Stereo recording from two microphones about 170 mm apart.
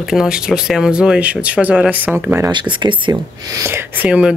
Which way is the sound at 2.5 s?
25° right (ahead or behind).